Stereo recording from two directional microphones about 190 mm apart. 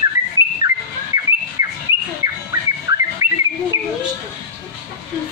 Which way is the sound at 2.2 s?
15° right (ahead or behind).